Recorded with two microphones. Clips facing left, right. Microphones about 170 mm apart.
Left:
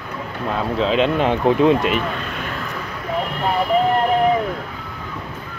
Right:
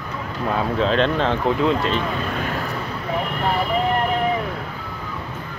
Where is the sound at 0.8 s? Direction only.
5° left (ahead or behind).